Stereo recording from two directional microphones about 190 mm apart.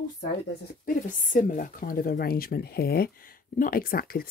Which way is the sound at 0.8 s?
45° left (ahead or behind).